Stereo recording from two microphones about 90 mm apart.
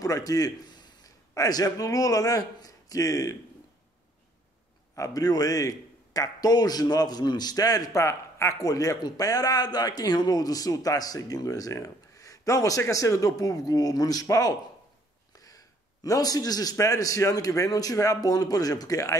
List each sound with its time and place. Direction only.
0.0 s a sound: 40° left (ahead or behind)
1.3 s a man's voice: 40° left (ahead or behind)
4.9 s a man's voice: 40° left (ahead or behind)